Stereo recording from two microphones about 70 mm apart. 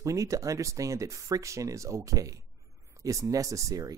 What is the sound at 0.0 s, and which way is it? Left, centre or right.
Speech, right.